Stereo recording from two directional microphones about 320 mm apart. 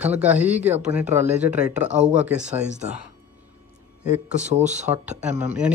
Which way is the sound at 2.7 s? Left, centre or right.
Right.